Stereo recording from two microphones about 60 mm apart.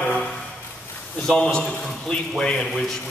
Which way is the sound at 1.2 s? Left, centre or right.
Centre.